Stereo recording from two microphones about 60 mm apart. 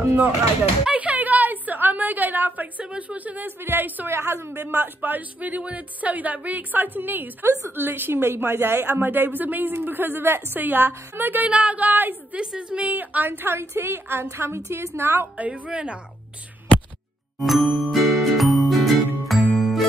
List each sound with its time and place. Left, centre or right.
0.0 s speech: right
0.9 s a sound: right
2.9 s a woman's voice: right
4.1 s speech: right
11.4 s a woman's voice: right
12.4 s a woman's voice: centre; by 15.2 s right
15.3 s a woman's voice: right
17.4 s music: centre